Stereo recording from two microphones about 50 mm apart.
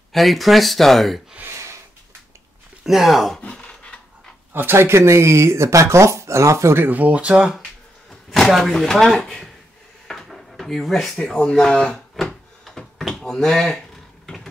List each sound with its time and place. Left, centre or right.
0.1 s speech: centre
1.5 s a sound: right
2.8 s speech: centre
4.6 s speech: right
6.9 s speech: right
8.1 s a sound: centre
8.5 s speech: centre
8.7 s speech: centre
10.0 s drawer open or close: centre
11.1 s speech: centre
12.7 s a sound: centre
13.0 s speech: centre
14.2 s mechanisms: centre